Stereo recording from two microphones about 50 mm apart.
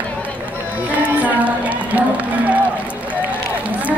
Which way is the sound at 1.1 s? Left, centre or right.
Right.